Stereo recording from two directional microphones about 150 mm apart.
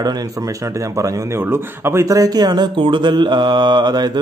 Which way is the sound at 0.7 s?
20° right (ahead or behind).